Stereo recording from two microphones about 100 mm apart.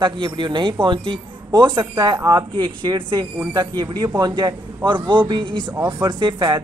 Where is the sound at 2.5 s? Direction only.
50° right (ahead or behind).